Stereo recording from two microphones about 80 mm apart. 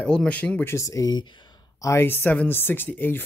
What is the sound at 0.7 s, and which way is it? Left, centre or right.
Speech, left.